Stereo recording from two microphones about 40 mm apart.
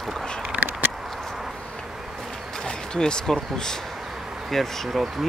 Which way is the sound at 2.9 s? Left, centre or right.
Left.